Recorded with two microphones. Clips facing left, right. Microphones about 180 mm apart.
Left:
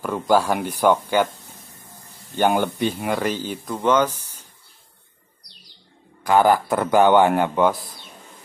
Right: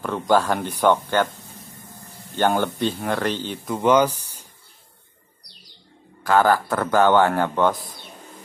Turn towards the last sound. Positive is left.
turn(degrees=15)  # may be behind; listen again after turning